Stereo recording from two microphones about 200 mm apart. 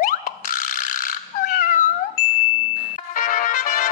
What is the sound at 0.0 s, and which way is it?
Dog, 40° left (ahead or behind).